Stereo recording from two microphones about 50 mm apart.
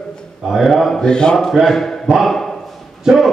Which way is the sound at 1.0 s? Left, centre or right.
Centre.